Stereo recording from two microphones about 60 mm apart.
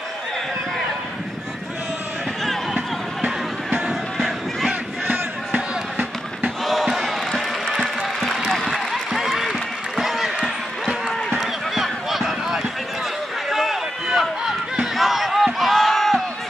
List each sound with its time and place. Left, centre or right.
2.4 s run: centre
5.5 s music: right
6.6 s basketball bounce: centre
7.8 s music: centre
8.4 s a sound: centre
8.9 s run: centre